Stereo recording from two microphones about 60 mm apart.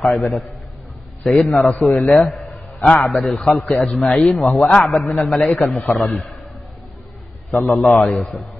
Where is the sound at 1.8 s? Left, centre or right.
Centre.